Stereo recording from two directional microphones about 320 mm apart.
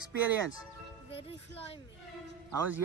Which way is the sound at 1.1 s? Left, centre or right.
Centre.